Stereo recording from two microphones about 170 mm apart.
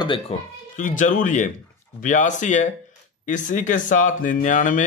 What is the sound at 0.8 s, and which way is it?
Speech, 50° left (ahead or behind).